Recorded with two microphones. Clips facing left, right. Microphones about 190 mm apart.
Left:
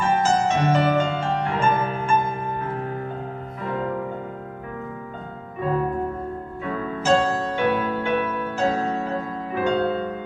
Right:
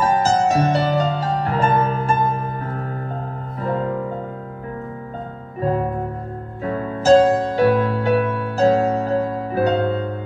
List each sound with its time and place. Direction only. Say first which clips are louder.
0.0 s music: right 3 dB; 35° right (ahead or behind)
6.6 s music: right 6 dB; 40° right (ahead or behind)